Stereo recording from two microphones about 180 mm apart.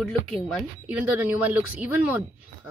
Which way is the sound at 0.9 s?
10° right (ahead or behind).